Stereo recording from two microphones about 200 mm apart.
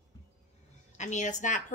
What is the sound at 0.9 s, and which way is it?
Speech, 35° left (ahead or behind).